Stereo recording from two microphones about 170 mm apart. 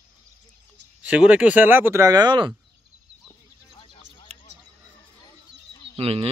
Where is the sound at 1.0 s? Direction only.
10° right (ahead or behind); by 2.5 s 25° right (ahead or behind).